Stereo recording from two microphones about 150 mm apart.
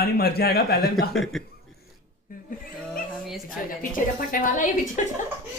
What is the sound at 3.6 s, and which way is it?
A woman's voice, 65° left (ahead or behind).